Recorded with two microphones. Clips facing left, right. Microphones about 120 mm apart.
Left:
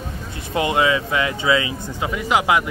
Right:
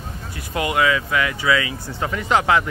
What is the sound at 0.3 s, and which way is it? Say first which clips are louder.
Speech: left 2 dB; 25° left (ahead or behind).